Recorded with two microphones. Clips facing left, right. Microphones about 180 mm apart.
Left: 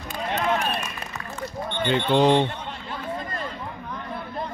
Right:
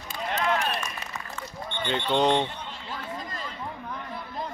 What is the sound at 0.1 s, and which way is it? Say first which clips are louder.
Run: left 2 dB; 65° left (ahead or behind).